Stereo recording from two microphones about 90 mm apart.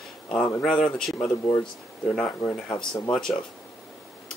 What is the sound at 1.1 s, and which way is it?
Speech, 35° left (ahead or behind).